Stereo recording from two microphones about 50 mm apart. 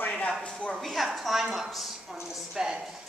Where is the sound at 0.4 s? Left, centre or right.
Left.